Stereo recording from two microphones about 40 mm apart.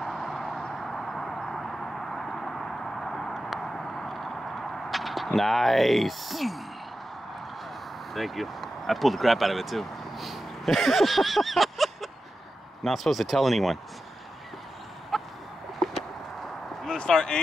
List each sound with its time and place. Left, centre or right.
0.0 s a sound: centre
8.1 s speech: centre
15.1 s chicken: centre
17.0 s speech: centre